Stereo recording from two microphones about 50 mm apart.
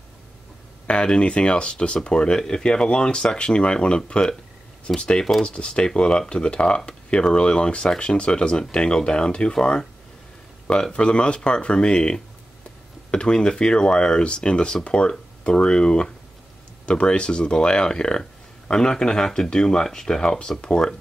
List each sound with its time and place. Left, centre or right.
0.8 s speech: centre